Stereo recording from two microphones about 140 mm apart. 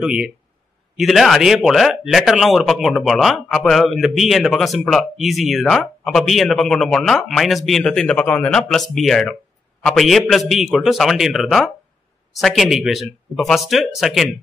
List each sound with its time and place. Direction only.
0.0 s speech: 5° right (ahead or behind)